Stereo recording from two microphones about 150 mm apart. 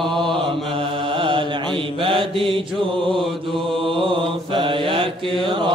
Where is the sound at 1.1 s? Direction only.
35° right (ahead or behind).